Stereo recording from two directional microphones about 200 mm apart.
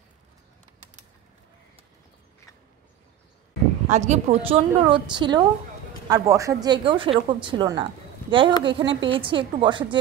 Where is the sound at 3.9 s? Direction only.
35° right (ahead or behind).